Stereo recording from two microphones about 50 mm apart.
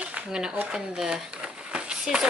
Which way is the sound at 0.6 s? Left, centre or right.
Centre.